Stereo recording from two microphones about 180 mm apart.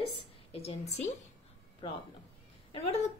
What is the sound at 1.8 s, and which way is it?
Speech, 25° left (ahead or behind).